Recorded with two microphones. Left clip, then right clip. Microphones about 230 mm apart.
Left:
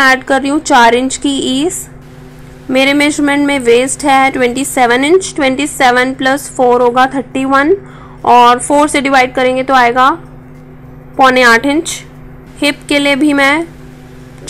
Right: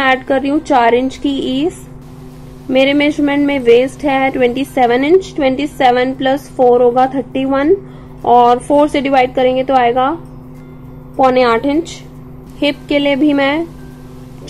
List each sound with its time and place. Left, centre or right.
0.0 s a woman's voice: centre
2.7 s a woman's voice: centre
11.2 s a woman's voice: centre